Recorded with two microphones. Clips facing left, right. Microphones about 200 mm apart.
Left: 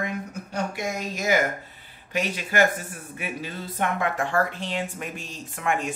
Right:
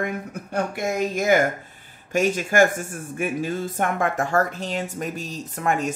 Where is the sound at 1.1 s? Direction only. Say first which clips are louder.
Right 3 dB; 55° right (ahead or behind).